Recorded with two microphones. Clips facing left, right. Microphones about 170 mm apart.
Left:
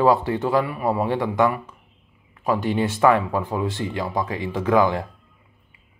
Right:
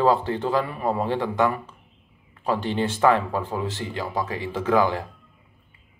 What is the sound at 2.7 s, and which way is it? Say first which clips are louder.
A man's voice: left 2 dB; 15° left (ahead or behind).